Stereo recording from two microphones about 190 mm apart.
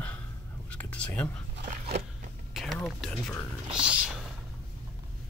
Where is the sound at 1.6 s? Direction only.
45° right (ahead or behind).